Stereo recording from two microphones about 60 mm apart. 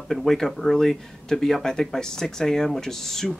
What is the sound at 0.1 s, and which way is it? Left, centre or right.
Speech, centre.